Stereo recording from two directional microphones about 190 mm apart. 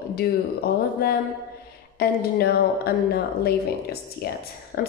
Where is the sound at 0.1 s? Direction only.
55° left (ahead or behind).